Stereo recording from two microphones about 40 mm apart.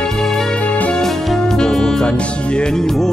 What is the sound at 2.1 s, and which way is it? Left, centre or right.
Music, left.